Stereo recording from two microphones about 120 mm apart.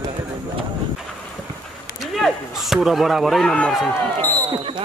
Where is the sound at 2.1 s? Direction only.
Centre (ahead or behind).